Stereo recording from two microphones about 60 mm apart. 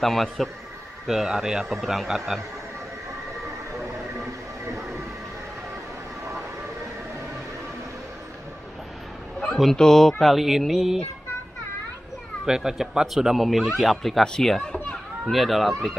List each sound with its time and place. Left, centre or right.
0.0 s speech: centre
4.6 s music: right
9.5 s speech: centre
12.4 s speech: centre
14.7 s children playing: centre
15.3 s speech: centre